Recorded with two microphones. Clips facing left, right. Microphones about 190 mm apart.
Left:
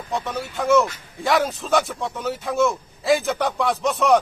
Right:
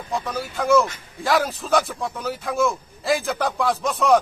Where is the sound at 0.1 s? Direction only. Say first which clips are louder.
Even; centre (ahead or behind).